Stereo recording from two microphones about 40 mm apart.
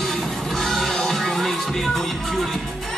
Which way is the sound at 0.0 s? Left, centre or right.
Centre.